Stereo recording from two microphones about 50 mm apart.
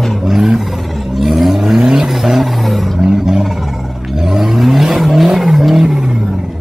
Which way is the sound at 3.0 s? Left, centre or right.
Centre.